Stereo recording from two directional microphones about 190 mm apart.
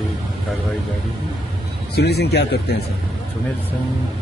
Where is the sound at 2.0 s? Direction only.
60° left (ahead or behind).